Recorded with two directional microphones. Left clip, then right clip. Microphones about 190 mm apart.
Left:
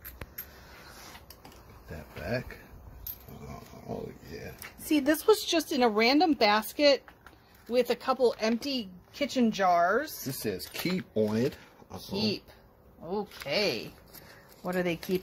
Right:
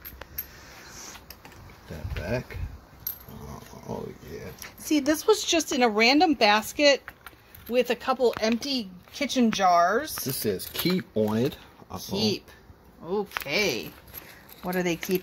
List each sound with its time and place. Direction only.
4.6 s speech: 10° left (ahead or behind)
10.8 s speech: 15° right (ahead or behind)
12.0 s speech: centre (ahead or behind)